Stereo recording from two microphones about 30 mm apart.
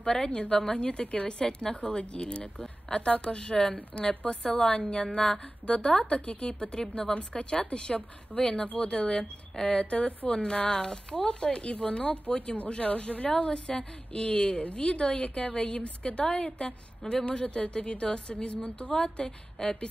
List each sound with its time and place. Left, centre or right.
0.0 s a woman's voice: left
1.2 s a woman's voice: left
6.8 s speech: left
7.2 s a woman's voice: left
9.8 s a woman's voice: left
10.3 s a woman's voice: left
12.3 s a woman's voice: left